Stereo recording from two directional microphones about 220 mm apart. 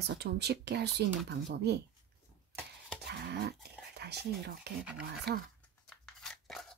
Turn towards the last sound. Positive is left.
turn(degrees=0)  # may be behind; listen again after turning